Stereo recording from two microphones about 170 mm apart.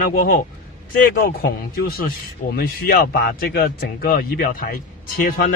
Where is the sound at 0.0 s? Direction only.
55° left (ahead or behind).